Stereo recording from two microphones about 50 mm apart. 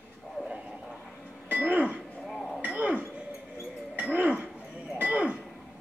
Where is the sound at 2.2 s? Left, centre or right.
Centre.